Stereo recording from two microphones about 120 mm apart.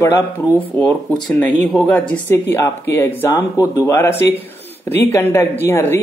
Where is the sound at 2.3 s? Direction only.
20° left (ahead or behind).